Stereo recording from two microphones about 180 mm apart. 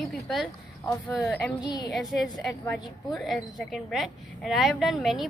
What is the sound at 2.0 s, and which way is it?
A woman's voice, centre (ahead or behind).